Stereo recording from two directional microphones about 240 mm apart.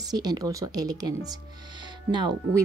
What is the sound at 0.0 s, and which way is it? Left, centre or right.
Speech, centre.